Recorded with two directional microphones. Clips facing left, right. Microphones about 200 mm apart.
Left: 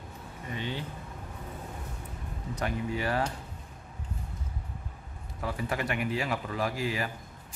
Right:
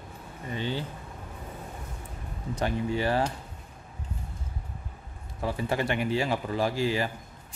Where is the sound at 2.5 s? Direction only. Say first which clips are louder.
Right 4 dB; 30° right (ahead or behind).